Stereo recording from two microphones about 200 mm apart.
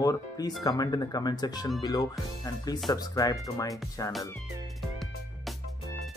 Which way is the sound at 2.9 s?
20° left (ahead or behind).